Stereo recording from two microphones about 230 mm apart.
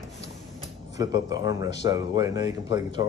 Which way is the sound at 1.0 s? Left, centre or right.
Centre.